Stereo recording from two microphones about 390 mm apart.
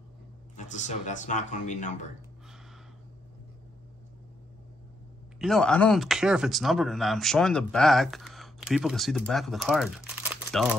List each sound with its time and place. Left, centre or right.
0.6 s speech: centre
5.4 s speech: centre